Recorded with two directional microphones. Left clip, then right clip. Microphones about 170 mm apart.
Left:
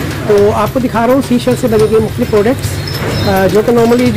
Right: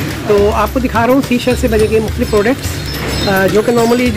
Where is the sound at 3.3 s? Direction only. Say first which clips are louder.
Left 2 dB; centre (ahead or behind).